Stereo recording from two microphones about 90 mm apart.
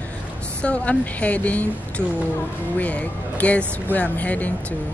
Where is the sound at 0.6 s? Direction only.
15° left (ahead or behind).